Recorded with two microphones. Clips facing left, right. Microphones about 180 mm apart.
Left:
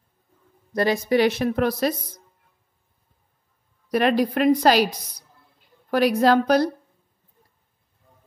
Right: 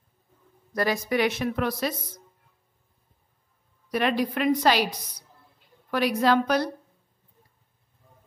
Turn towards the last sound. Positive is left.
turn(degrees=35)  # may be behind; listen again after turning